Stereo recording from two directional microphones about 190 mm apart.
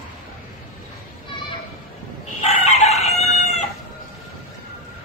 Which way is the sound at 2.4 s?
35° left (ahead or behind).